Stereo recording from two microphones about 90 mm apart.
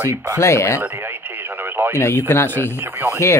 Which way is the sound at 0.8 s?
25° right (ahead or behind).